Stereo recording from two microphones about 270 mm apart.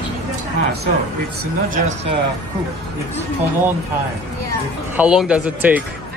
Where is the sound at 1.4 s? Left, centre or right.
Right.